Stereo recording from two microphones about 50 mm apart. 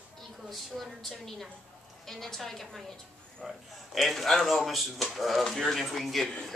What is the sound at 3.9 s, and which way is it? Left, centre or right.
Speech, centre.